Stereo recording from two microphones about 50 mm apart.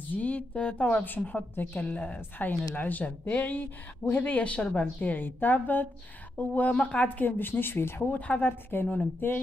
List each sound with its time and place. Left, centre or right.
0.1 s speech: left
1.5 s a woman's voice: left
5.1 s a woman's voice: left
7.2 s a woman's voice: left